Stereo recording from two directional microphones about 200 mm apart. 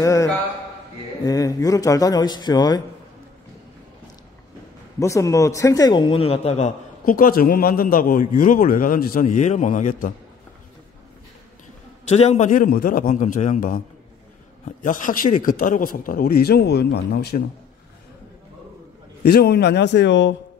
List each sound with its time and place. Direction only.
0.0 s a man's voice: 15° left (ahead or behind)
5.0 s a man's voice: 15° left (ahead or behind); by 10.1 s 40° left (ahead or behind)
12.1 s a man's voice: 35° left (ahead or behind); by 17.4 s 55° left (ahead or behind)
19.2 s a man's voice: 50° left (ahead or behind)